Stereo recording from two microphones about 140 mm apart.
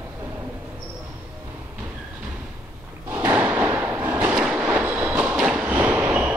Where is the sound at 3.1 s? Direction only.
15° right (ahead or behind).